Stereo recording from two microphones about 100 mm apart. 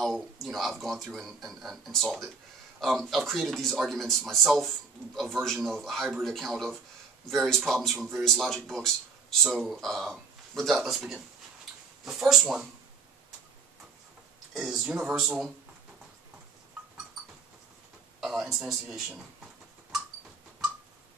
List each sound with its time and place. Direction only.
0.0 s speech: centre (ahead or behind)
14.5 s speech: 5° right (ahead or behind)
18.2 s a sound: 5° right (ahead or behind)